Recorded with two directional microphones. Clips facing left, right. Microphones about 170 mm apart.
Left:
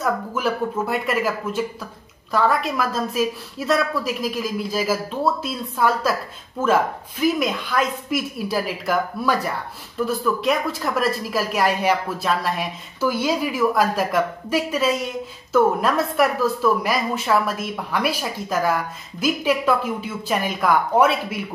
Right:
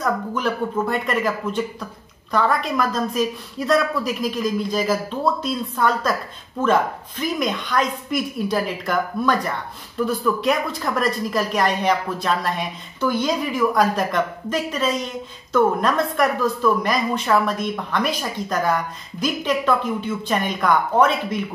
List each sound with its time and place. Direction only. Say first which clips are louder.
0.0 s speech: even; 5° left (ahead or behind)